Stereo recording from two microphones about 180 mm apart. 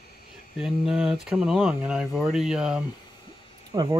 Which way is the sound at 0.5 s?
Centre (ahead or behind).